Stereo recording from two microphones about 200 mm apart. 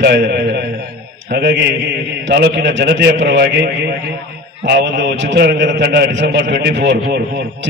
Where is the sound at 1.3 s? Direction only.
60° right (ahead or behind).